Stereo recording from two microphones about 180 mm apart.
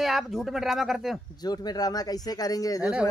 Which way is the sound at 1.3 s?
20° left (ahead or behind).